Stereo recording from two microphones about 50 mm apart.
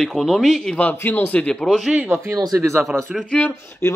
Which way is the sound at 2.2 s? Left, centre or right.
Right.